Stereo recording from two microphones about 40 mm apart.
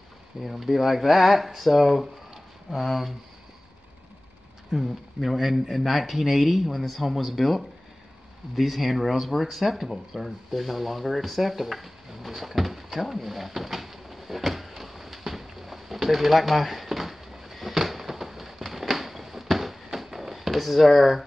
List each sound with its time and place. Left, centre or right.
0.4 s speech: centre
4.6 s speech: centre
10.1 s a sound: centre